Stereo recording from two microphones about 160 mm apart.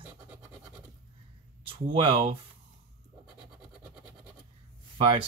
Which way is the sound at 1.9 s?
35° right (ahead or behind).